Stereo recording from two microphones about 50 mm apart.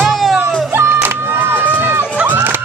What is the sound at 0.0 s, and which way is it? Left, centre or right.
Music, centre.